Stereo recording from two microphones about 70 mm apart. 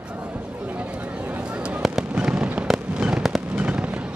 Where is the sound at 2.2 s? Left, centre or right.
Centre.